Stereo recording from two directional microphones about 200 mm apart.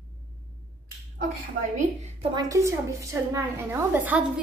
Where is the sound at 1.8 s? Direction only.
35° right (ahead or behind).